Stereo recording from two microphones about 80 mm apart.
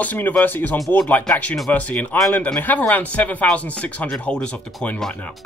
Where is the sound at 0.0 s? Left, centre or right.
Left.